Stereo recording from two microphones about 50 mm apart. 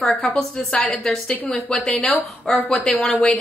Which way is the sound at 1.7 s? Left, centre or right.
Centre.